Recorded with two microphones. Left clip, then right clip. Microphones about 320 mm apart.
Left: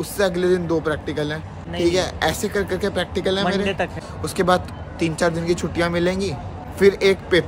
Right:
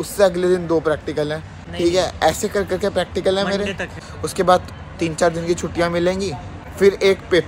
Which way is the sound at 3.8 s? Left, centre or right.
Left.